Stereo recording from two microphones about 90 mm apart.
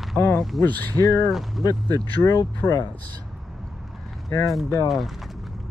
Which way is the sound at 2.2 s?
45° left (ahead or behind).